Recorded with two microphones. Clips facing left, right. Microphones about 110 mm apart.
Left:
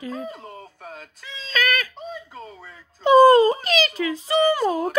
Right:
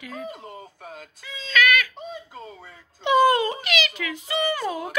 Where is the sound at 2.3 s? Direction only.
5° right (ahead or behind).